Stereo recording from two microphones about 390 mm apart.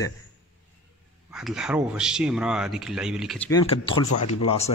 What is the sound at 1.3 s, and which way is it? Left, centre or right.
Speech, centre.